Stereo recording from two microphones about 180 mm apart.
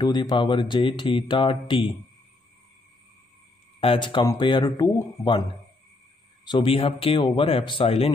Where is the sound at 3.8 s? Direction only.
30° left (ahead or behind).